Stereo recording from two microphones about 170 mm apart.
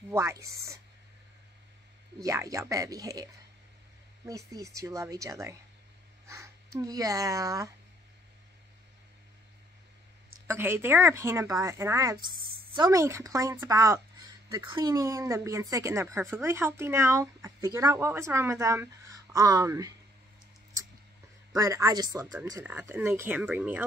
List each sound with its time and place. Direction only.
0.1 s speech: 15° right (ahead or behind)
2.2 s speech: 20° right (ahead or behind)
4.3 s speech: 20° right (ahead or behind)
10.4 s speech: 15° right (ahead or behind)
21.5 s speech: 20° right (ahead or behind)